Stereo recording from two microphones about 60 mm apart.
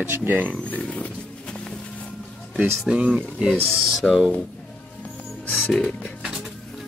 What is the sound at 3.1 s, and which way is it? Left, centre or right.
Speech, centre.